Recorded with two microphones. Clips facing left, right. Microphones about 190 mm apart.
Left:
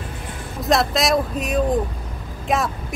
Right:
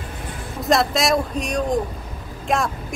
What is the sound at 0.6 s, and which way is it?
Speech, centre (ahead or behind).